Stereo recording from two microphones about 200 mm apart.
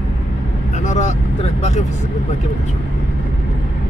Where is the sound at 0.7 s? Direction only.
35° left (ahead or behind).